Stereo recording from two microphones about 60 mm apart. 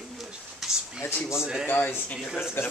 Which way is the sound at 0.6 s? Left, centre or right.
Centre.